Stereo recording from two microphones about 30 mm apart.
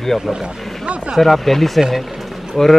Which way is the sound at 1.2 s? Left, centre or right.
Centre.